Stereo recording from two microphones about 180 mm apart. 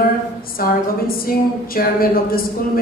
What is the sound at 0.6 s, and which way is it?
A woman's voice, 55° left (ahead or behind).